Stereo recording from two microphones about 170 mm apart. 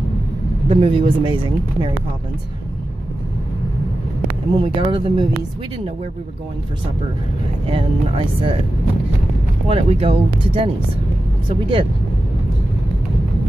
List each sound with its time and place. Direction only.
0.7 s speech: 30° right (ahead or behind)
4.6 s speech: 30° right (ahead or behind)
7.7 s speech: 30° right (ahead or behind)
9.7 s speech: 35° right (ahead or behind)